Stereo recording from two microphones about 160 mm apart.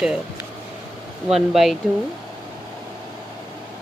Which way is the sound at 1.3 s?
Centre (ahead or behind).